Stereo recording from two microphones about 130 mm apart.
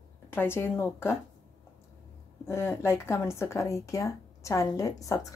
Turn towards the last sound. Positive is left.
turn(degrees=25)  # may be behind; listen again after turning